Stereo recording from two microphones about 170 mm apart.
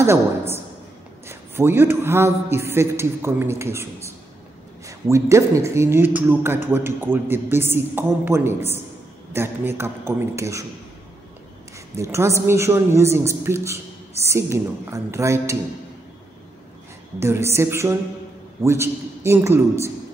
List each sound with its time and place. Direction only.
0.0 s speech: 15° right (ahead or behind)
11.9 s speech: 15° right (ahead or behind)
17.2 s speech: 15° right (ahead or behind)